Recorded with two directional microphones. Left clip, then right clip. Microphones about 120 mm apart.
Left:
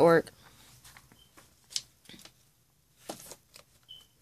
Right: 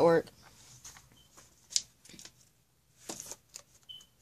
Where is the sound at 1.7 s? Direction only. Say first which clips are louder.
Right 3 dB; 5° left (ahead or behind).